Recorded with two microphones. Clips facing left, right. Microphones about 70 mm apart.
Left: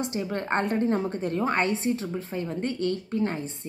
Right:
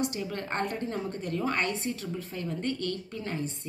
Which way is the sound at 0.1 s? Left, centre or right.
Left.